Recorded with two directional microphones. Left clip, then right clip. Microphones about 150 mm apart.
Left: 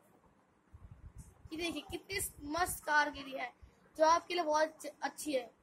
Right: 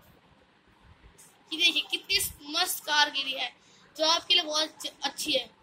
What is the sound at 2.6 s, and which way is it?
A woman's voice, 65° left (ahead or behind).